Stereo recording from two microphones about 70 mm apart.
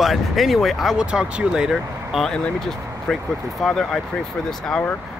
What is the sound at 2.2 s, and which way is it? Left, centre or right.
Speech, centre.